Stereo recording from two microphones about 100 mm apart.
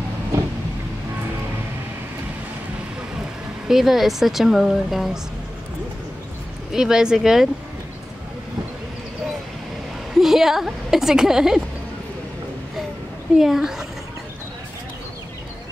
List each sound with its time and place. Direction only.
3.6 s speech: 5° right (ahead or behind)
6.7 s speech: 5° right (ahead or behind)
10.1 s speech: 5° right (ahead or behind)
13.4 s speech: 5° right (ahead or behind)